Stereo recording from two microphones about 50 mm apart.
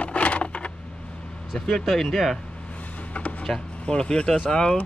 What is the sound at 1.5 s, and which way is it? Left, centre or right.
Speech, centre.